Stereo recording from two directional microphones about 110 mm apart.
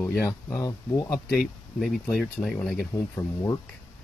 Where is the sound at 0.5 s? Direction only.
35° left (ahead or behind).